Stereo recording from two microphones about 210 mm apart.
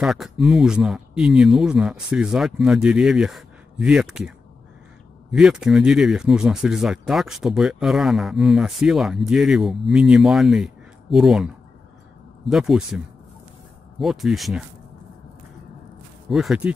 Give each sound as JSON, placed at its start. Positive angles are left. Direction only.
{"t": 0.0, "sound": "speech", "side_deg": 0}
{"t": 5.3, "sound": "speech", "side_deg": 0}
{"t": 16.3, "sound": "speech", "side_deg": 0}